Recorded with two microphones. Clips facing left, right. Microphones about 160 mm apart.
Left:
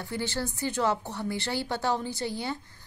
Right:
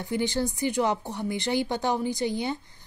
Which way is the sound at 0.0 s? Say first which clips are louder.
Right 5 dB; 15° right (ahead or behind).